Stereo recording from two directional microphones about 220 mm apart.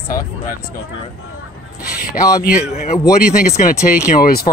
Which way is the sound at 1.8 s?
45° left (ahead or behind).